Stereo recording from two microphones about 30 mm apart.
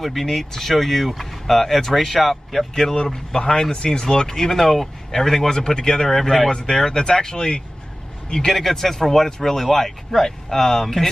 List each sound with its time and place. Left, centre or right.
0.0 s speech: centre
3.3 s speech: left; by 5.5 s centre
5.8 s speech: left
6.0 s speech: centre
6.7 s speech: left
8.5 s speech: centre